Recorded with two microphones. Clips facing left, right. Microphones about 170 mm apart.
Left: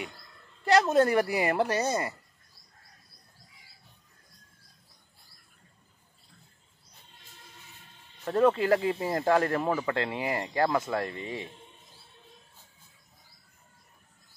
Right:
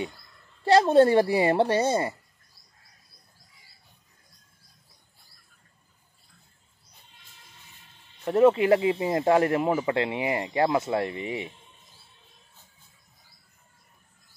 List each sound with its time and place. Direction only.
0.7 s speech: 30° right (ahead or behind)
8.3 s speech: 25° right (ahead or behind)